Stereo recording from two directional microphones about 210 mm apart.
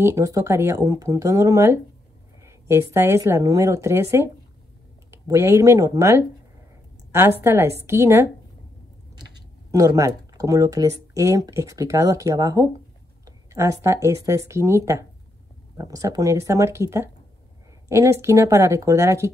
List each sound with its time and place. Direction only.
0.0 s speech: 15° right (ahead or behind)
9.7 s speech: 15° right (ahead or behind)